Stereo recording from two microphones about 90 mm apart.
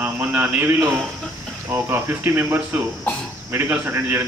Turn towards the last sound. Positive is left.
turn(degrees=-25)  # may be behind; listen again after turning